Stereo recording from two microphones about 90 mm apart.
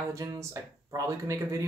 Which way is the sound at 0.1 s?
35° right (ahead or behind).